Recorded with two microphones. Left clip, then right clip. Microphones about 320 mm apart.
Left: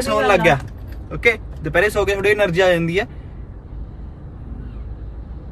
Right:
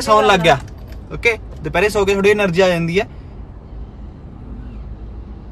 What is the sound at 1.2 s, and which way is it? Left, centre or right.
Speech, centre.